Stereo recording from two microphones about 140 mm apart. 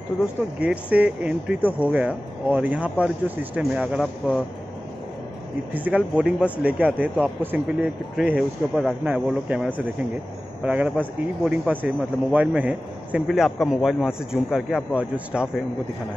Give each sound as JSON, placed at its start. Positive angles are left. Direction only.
{"t": 0.6, "sound": "speech", "side_deg": -10}
{"t": 5.7, "sound": "a man's voice", "side_deg": -10}